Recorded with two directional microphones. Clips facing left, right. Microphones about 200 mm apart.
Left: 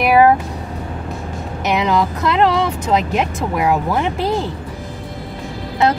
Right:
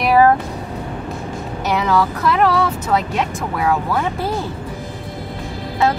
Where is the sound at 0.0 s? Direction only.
10° left (ahead or behind).